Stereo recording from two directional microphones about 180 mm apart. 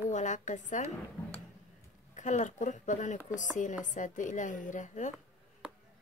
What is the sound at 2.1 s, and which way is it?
A woman's voice, 40° left (ahead or behind).